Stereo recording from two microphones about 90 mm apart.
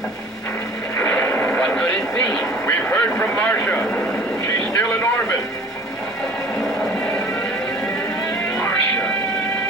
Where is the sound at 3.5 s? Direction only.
20° left (ahead or behind).